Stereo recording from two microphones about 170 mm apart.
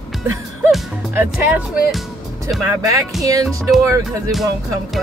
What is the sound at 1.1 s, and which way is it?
Speech, 10° right (ahead or behind).